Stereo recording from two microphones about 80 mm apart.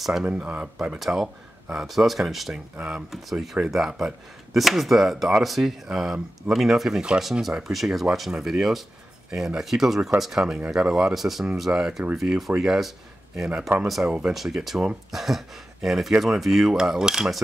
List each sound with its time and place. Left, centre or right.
0.0 s speech: centre
0.9 s speech: centre
14.3 s speech: centre